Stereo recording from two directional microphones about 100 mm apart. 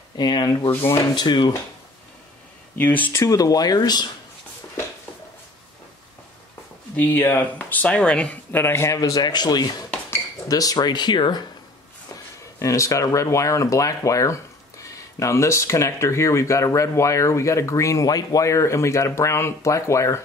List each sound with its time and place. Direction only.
0.2 s speech: 45° left (ahead or behind)
0.7 s speech: 25° left (ahead or behind)
1.1 s speech: 45° left (ahead or behind)
2.8 s speech: 15° left (ahead or behind)
3.3 s speech: 40° left (ahead or behind)
7.0 s speech: 20° left (ahead or behind); by 11.4 s 50° left (ahead or behind)
12.5 s speech: 30° left (ahead or behind)